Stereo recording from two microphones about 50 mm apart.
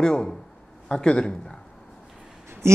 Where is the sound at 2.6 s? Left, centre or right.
Right.